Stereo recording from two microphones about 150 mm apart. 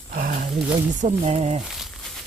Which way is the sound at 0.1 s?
70° right (ahead or behind).